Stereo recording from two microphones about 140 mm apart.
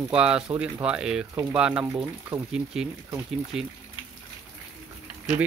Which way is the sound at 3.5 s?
5° right (ahead or behind).